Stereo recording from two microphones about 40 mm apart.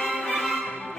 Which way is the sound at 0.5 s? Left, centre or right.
Left.